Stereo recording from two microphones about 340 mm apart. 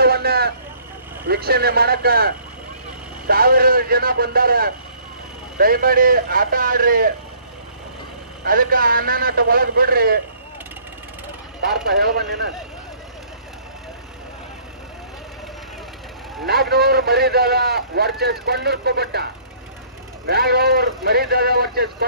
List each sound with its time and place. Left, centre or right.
0.0 s vehicle: right
1.2 s a man's voice: right
8.5 s a man's voice: right
11.6 s a man's voice: right
16.4 s a man's voice: right
20.2 s a man's voice: right